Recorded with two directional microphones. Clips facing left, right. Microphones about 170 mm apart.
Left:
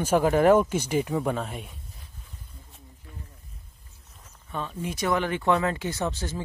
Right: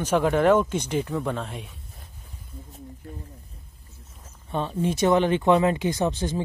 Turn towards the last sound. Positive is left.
turn(degrees=-20)  # may be behind; listen again after turning